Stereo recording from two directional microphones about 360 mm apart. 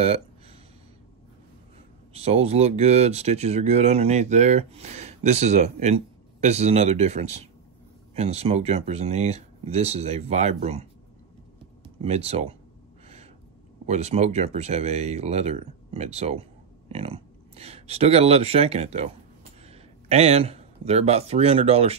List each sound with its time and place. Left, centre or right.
0.0 s a sound: centre
2.1 s speech: centre
13.8 s speech: centre